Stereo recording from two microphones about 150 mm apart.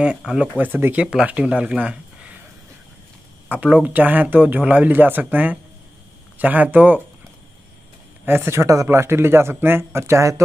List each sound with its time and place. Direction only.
0.0 s speech: 5° right (ahead or behind)
3.4 s speech: 10° right (ahead or behind)
8.3 s speech: 15° right (ahead or behind)